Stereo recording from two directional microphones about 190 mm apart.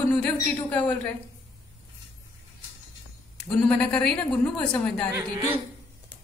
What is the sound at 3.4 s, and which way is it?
A woman's voice, 5° left (ahead or behind).